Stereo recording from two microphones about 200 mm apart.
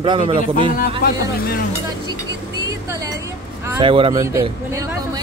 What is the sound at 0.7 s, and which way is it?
Speech, 50° left (ahead or behind).